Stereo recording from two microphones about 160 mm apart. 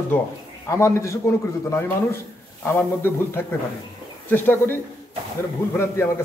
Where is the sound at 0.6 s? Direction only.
20° left (ahead or behind).